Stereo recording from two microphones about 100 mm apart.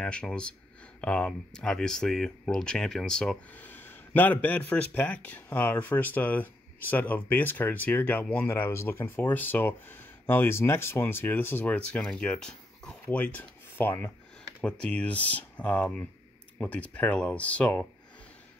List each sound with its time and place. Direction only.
0.0 s a man's voice: 10° left (ahead or behind)
3.6 s a man's voice: 20° left (ahead or behind)
14.6 s a man's voice: 10° left (ahead or behind)